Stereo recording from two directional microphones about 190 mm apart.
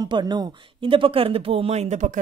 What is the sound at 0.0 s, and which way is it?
Speech, 20° right (ahead or behind).